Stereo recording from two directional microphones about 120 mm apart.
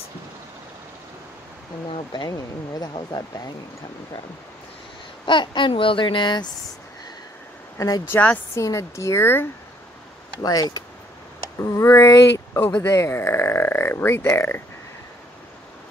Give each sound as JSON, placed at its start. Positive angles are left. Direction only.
{"t": 2.2, "sound": "speech", "side_deg": 30}
{"t": 5.2, "sound": "speech", "side_deg": 40}
{"t": 7.7, "sound": "speech", "side_deg": 30}
{"t": 8.1, "sound": "a woman's voice", "side_deg": 10}
{"t": 8.5, "sound": "speech", "side_deg": 25}
{"t": 10.4, "sound": "speech", "side_deg": 30}